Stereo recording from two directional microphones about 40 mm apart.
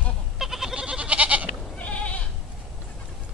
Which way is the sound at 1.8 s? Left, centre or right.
Left.